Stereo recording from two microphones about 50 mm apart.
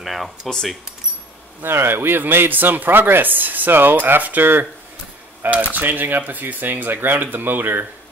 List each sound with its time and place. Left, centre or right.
0.0 s speech: centre
0.5 s speech: centre
1.6 s speech: right